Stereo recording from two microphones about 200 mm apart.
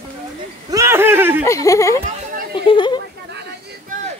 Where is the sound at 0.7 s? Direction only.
15° right (ahead or behind).